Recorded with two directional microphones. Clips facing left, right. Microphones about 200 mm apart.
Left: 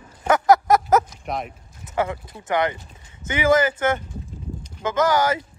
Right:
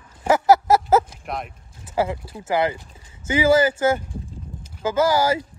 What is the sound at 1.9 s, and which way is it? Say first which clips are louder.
Speech: right 1 dB; 30° right (ahead or behind).